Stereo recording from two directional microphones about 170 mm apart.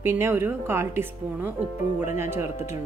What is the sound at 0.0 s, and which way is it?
A woman's voice, 15° right (ahead or behind).